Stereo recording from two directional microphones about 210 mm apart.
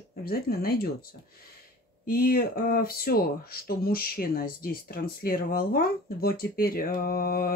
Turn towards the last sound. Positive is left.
turn(degrees=45)  # may be behind; listen again after turning